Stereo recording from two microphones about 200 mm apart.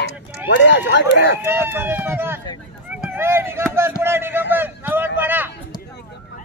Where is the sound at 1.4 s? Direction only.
10° right (ahead or behind).